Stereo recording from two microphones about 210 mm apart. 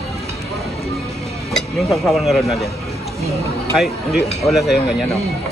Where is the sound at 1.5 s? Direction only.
Centre (ahead or behind).